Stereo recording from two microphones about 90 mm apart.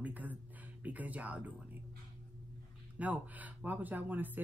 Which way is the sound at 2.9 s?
15° right (ahead or behind).